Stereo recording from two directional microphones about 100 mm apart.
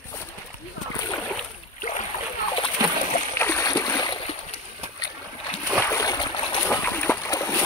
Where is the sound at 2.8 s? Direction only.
40° right (ahead or behind).